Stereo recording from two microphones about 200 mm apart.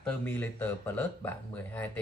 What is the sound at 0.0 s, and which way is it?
Speech, 10° left (ahead or behind).